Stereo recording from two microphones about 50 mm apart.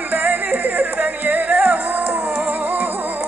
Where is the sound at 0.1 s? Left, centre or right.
Right.